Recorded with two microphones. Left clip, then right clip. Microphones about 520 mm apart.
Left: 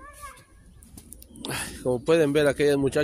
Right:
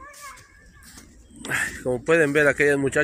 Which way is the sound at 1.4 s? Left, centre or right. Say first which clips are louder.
Right 4 dB; left.